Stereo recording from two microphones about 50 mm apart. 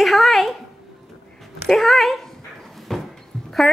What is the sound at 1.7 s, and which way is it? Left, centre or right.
Speech, centre.